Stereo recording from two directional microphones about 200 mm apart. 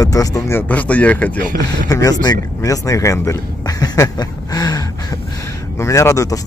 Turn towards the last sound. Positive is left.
turn(degrees=15)  # may be behind; listen again after turning